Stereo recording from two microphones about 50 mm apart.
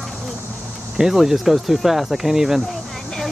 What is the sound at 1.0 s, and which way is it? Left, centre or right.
Speech, centre.